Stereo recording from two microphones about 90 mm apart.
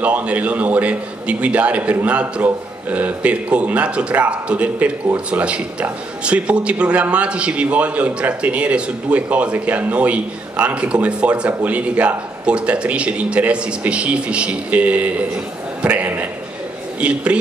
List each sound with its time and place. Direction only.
0.0 s speech: 15° right (ahead or behind)
15.8 s a sound: 20° right (ahead or behind)
17.0 s speech: 10° right (ahead or behind)